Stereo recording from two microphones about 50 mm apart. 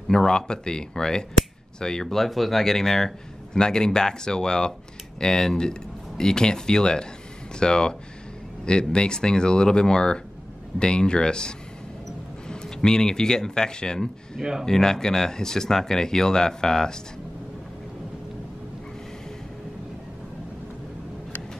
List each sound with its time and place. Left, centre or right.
0.1 s speech: centre
14.4 s speech: centre
14.7 s speech: centre